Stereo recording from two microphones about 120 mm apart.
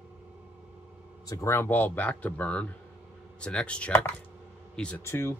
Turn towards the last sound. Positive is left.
turn(degrees=20)  # may be behind; listen again after turning